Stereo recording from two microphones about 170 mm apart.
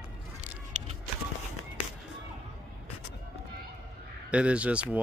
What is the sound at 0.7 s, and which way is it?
Vehicle, 45° right (ahead or behind).